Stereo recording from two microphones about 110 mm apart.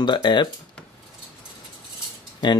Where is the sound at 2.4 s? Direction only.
40° left (ahead or behind).